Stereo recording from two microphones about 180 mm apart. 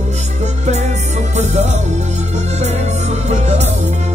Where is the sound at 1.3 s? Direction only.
40° right (ahead or behind).